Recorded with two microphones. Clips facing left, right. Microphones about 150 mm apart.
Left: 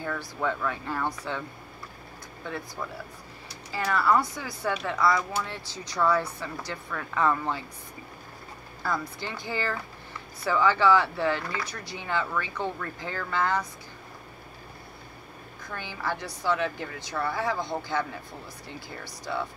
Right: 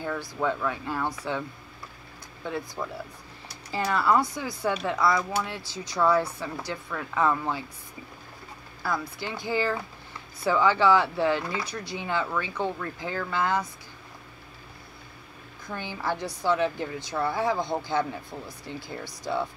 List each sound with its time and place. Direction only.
0.0 s speech: 10° right (ahead or behind)
2.4 s speech: 15° right (ahead or behind)
8.8 s speech: 5° right (ahead or behind)
15.9 s speech: 15° right (ahead or behind)